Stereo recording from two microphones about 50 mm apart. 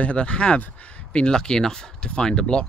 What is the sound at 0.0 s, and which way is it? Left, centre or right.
Speech, left.